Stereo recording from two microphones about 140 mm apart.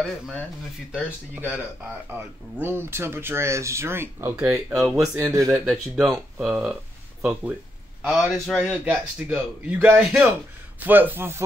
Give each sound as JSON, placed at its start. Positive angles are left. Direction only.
{"t": 0.0, "sound": "speech", "side_deg": 5}
{"t": 2.6, "sound": "a man's voice", "side_deg": -15}
{"t": 4.5, "sound": "speech", "side_deg": 0}
{"t": 5.1, "sound": "speech", "side_deg": -25}
{"t": 5.7, "sound": "a man's voice", "side_deg": 0}